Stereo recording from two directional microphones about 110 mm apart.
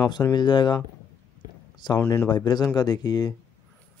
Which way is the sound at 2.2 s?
40° left (ahead or behind).